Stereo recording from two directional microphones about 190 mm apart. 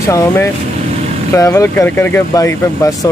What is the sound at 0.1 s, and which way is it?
Speech, 15° left (ahead or behind).